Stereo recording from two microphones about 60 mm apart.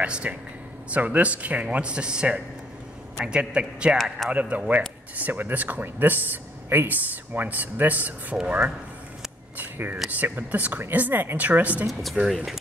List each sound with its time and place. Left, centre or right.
0.0 s a man's voice: centre
9.6 s a sound: right
10.1 s a woman's voice: right
11.9 s speech: centre